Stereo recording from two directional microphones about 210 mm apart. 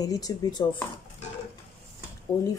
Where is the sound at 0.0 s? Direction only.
15° left (ahead or behind).